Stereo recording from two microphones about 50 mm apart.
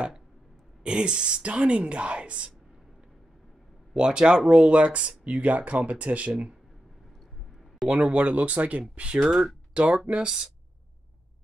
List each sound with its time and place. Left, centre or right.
0.8 s speech: centre
3.9 s speech: centre
4.5 s speech: right
7.9 s speech: right
9.3 s speech: centre
9.9 s speech: right